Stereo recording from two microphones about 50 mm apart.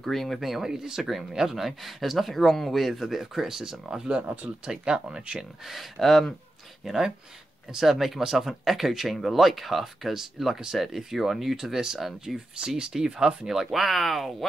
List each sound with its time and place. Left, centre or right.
0.0 s speech: centre
4.6 s speech: centre
5.7 s speech: centre